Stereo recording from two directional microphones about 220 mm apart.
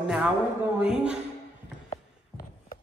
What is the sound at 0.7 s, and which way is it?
Speech, 5° right (ahead or behind).